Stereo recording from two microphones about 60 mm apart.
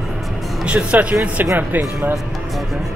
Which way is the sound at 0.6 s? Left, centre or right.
Right.